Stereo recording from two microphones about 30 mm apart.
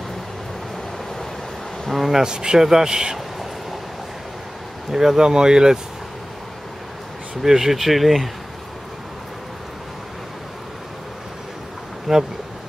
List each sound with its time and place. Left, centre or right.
1.9 s speech: centre
2.2 s speech: right
4.9 s speech: centre
7.4 s speech: centre
12.1 s speech: centre